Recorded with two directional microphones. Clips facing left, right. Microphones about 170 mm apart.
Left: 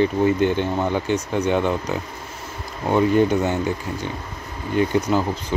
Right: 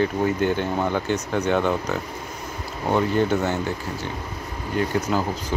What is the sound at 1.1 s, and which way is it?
Speech, 10° left (ahead or behind).